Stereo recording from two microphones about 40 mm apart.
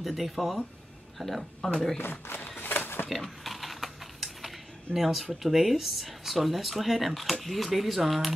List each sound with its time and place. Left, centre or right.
0.0 s speech: centre
2.0 s speech: left
2.6 s a sound: left
3.1 s speech: centre